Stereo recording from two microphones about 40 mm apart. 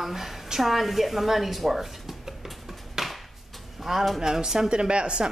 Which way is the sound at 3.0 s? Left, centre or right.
Centre.